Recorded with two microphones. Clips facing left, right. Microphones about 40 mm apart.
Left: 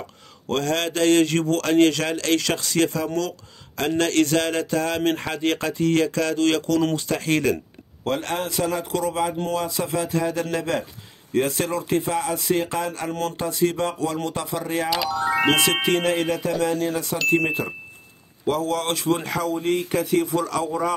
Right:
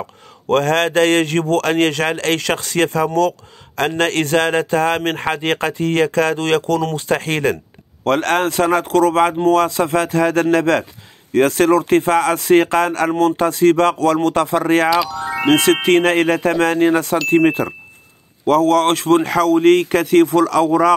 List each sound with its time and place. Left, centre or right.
0.5 s speech: right
4.0 s speech: right
8.0 s speech: right
14.9 s speech: centre
15.5 s speech: right
17.3 s speech: right